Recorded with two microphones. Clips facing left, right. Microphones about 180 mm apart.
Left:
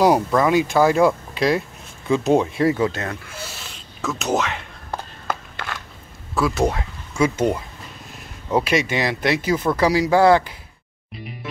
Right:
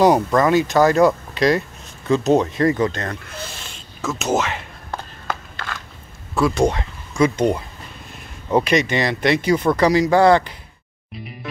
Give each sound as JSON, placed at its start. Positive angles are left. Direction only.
{"t": 0.0, "sound": "speech", "side_deg": 5}
{"t": 6.3, "sound": "speech", "side_deg": 5}